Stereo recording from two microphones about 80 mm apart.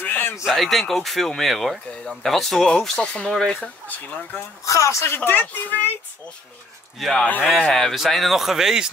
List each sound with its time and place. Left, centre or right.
0.0 s a sound: left
0.5 s speech: centre
3.6 s speech: left
4.6 s speech: left
5.1 s speech: left
7.0 s speech: centre